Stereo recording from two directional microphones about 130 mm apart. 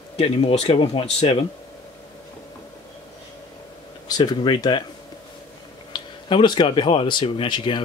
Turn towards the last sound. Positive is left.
turn(degrees=40)  # may be behind; listen again after turning